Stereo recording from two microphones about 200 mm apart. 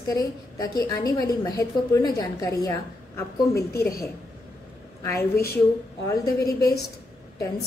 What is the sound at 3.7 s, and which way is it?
Speech, 50° left (ahead or behind).